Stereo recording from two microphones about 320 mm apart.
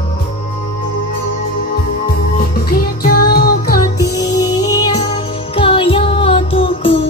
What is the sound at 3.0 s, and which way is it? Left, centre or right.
Music, left.